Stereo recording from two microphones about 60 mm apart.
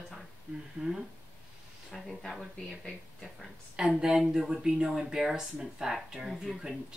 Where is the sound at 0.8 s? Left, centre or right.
Centre.